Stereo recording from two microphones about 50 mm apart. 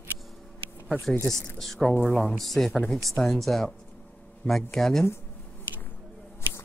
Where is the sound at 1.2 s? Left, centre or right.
Centre.